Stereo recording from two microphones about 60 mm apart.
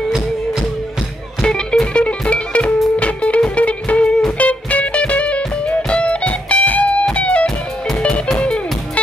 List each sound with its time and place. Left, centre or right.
1.4 s music: centre